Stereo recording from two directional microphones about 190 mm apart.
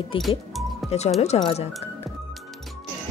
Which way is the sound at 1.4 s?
25° left (ahead or behind).